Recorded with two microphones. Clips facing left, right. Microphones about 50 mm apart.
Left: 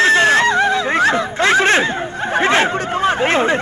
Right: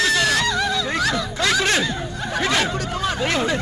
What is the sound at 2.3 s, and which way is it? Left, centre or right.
Chatter, left.